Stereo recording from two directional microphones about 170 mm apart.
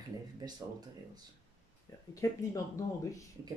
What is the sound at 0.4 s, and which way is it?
Speech, 20° right (ahead or behind).